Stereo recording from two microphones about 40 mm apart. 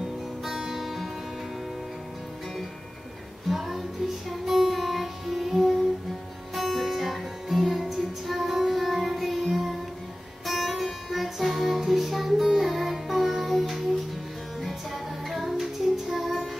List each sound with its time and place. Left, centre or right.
0.5 s music: centre
3.4 s music: centre